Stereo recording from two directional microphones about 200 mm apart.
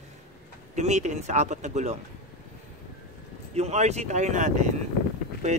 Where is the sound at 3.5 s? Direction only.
35° right (ahead or behind).